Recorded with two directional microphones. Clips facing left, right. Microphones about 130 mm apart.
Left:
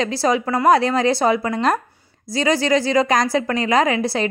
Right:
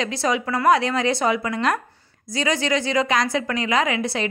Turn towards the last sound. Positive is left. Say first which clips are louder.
# left 4 dB
turn(degrees=35)  # may be behind; listen again after turning